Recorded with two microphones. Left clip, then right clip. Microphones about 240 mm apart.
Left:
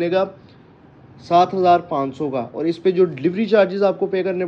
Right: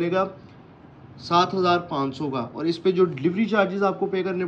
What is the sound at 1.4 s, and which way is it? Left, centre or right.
Speech, centre.